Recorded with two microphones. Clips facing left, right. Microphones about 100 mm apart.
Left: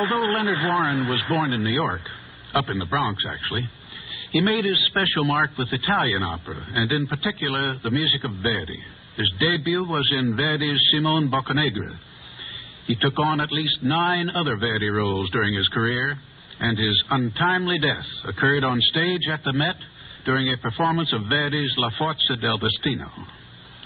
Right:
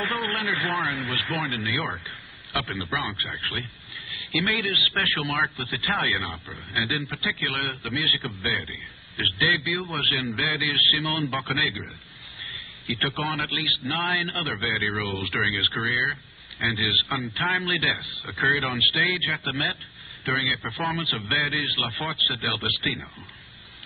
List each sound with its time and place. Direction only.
0.0 s a man's voice: 30° left (ahead or behind)
13.1 s a man's voice: 30° left (ahead or behind)